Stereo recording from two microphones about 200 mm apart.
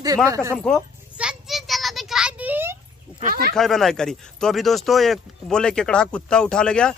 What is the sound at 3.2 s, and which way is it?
Speech, 45° right (ahead or behind).